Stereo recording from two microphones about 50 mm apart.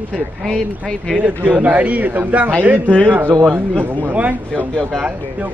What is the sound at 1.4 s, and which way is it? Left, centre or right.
Speech, right.